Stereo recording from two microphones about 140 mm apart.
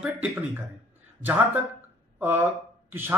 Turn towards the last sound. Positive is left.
turn(degrees=-15)  # may be behind; listen again after turning